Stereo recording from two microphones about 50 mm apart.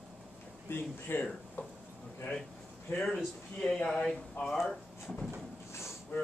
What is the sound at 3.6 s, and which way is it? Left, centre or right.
Speech, centre.